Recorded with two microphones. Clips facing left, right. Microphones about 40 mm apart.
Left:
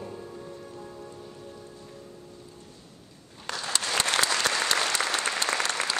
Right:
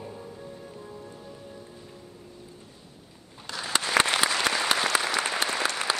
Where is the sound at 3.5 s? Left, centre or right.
Centre.